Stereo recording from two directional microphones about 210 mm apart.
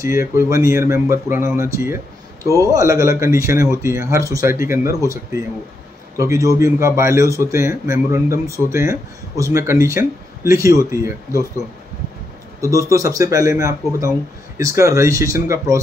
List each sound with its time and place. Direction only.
0.4 s speech: 15° right (ahead or behind)
12.6 s speech: 15° right (ahead or behind)